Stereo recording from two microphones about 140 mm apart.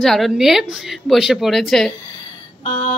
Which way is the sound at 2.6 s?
55° left (ahead or behind).